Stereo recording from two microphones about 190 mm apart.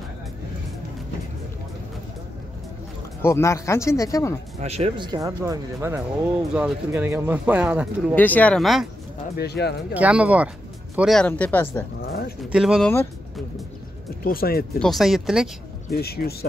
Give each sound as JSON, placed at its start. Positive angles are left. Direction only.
{"t": 3.2, "sound": "speech", "side_deg": 15}
{"t": 4.6, "sound": "speech", "side_deg": -35}
{"t": 8.1, "sound": "speech", "side_deg": 10}
{"t": 9.4, "sound": "speech", "side_deg": 60}
{"t": 9.9, "sound": "speech", "side_deg": -5}
{"t": 12.1, "sound": "pigeon", "side_deg": 55}
{"t": 12.4, "sound": "speech", "side_deg": -5}
{"t": 14.2, "sound": "speech", "side_deg": 50}
{"t": 14.8, "sound": "speech", "side_deg": 0}
{"t": 15.9, "sound": "speech", "side_deg": 55}